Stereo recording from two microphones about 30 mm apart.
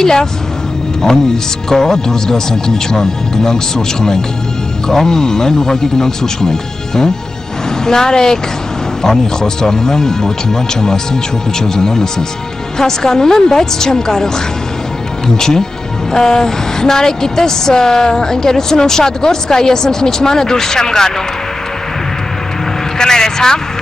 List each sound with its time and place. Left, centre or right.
0.0 s a woman's voice: centre
22.9 s a woman's voice: left